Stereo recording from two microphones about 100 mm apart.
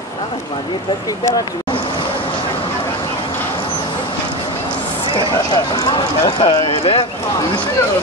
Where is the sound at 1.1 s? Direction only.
35° left (ahead or behind).